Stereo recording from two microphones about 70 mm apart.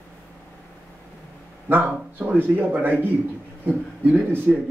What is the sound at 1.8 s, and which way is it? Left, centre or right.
A man's voice, centre.